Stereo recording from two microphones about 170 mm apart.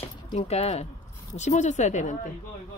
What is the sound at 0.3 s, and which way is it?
Speech, 40° left (ahead or behind).